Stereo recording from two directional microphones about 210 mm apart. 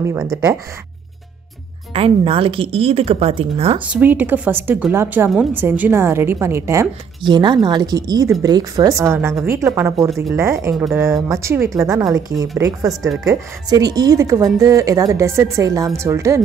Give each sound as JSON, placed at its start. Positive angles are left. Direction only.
{"t": 0.0, "sound": "speech", "side_deg": -10}
{"t": 2.0, "sound": "a woman's voice", "side_deg": -25}
{"t": 3.8, "sound": "speech", "side_deg": -10}